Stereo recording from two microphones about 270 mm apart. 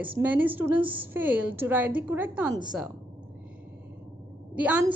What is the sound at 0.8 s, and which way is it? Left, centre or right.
Speech, centre.